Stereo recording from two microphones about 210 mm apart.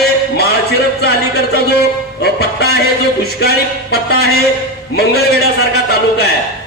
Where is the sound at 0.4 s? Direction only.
50° left (ahead or behind).